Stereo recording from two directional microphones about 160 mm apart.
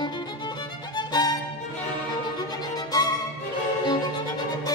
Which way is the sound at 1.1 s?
25° left (ahead or behind).